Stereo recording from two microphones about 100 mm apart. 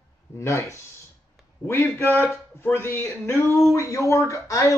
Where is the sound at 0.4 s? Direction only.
30° left (ahead or behind).